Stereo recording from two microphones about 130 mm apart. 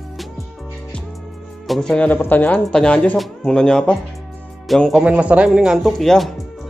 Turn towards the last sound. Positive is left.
turn(degrees=0)  # may be behind; listen again after turning